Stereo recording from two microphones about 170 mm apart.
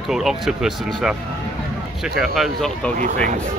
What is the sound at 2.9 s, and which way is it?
Speech, 50° right (ahead or behind).